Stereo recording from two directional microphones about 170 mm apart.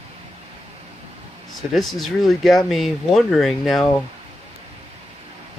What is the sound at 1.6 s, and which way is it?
Speech, centre (ahead or behind).